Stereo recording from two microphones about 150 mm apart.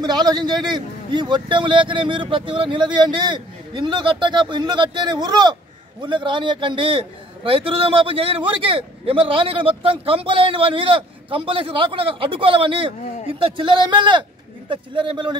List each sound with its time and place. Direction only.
0.0 s a man's voice: 25° right (ahead or behind)